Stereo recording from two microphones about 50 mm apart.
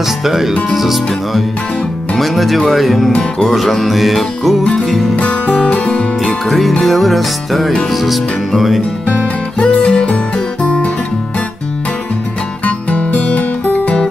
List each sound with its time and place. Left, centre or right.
0.2 s music: centre
3.1 s music: centre
3.4 s music: centre
5.1 s music: left
6.2 s music: centre
9.0 s music: left
12.6 s music: left